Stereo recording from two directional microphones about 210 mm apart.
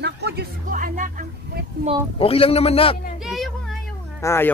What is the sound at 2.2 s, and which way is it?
Speech, 25° left (ahead or behind).